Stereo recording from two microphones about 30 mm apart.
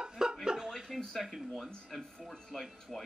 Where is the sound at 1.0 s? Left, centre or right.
Centre.